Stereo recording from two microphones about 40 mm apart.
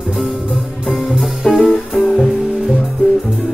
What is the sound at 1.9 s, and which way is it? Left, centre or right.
Music, left.